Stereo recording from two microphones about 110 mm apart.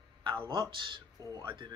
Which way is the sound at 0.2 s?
50° right (ahead or behind).